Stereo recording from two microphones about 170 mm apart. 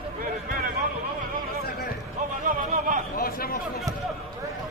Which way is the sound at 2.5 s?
50° right (ahead or behind).